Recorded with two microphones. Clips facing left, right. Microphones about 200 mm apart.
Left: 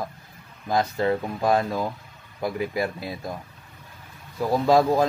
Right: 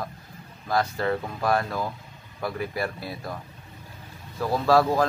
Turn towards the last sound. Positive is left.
turn(degrees=20)  # may be behind; listen again after turning